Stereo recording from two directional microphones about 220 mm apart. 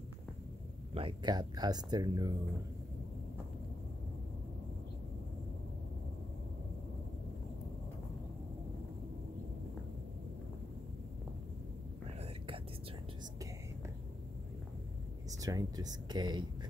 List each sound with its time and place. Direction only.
0.9 s speech: 20° right (ahead or behind)
15.4 s speech: 15° right (ahead or behind)